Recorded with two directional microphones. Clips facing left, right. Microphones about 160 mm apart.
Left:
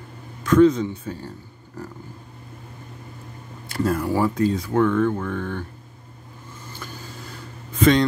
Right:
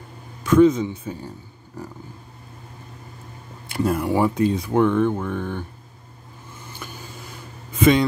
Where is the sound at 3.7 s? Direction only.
20° right (ahead or behind).